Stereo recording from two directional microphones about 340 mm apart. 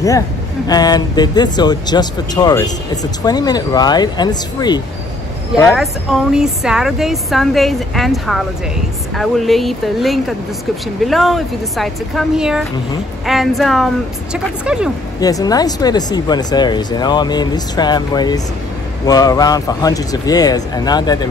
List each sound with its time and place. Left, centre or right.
0.7 s a woman's voice: centre
15.1 s speech: centre